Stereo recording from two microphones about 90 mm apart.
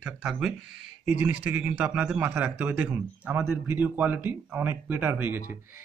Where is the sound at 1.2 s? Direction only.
15° right (ahead or behind).